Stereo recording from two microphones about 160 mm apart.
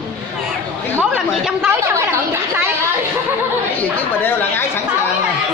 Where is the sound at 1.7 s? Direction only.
15° right (ahead or behind).